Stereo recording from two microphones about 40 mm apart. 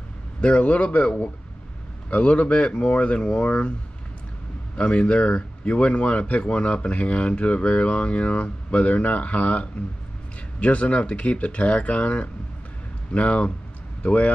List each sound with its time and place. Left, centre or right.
0.4 s speech: left
4.7 s speech: left